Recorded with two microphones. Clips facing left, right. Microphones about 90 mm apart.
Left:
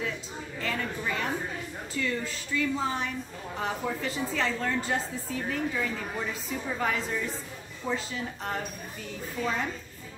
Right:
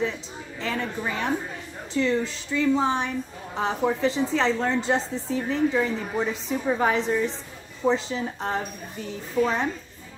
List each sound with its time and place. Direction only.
0.6 s a woman's voice: 20° right (ahead or behind)